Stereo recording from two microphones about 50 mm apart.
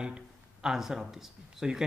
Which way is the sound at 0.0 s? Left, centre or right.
Centre.